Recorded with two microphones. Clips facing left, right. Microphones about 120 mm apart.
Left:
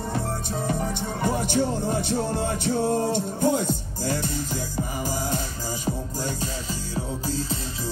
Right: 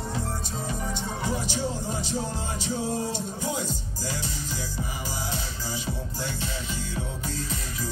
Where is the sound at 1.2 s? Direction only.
55° left (ahead or behind).